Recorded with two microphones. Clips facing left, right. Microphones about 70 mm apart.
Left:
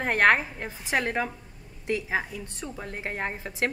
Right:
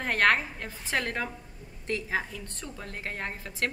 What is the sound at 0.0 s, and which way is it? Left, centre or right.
A woman's voice, centre.